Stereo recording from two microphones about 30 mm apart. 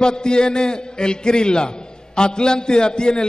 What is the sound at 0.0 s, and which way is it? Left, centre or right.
A man's voice, left.